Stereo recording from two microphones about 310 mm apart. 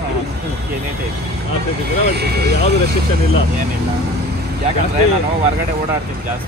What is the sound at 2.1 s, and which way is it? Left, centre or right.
Speech, right.